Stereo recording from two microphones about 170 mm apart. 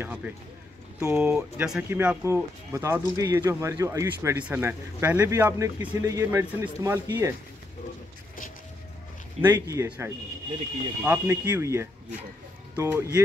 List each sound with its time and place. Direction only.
0.0 s speech: 10° right (ahead or behind)
9.4 s speech: 15° right (ahead or behind)